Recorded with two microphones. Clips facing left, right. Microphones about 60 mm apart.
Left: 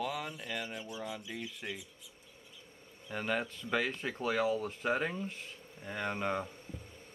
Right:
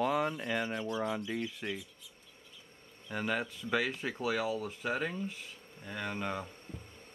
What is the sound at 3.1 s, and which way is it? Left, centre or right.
Speech, centre.